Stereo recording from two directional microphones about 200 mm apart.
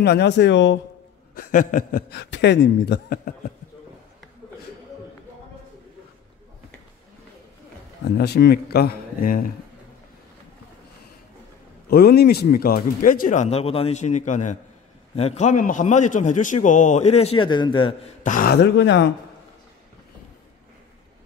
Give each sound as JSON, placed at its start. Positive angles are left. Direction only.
{"t": 0.0, "sound": "speech", "side_deg": 55}
{"t": 1.3, "sound": "a man's voice", "side_deg": 45}
{"t": 8.2, "sound": "a man's voice", "side_deg": 55}
{"t": 11.9, "sound": "a man's voice", "side_deg": 50}
{"t": 18.2, "sound": "speech", "side_deg": 45}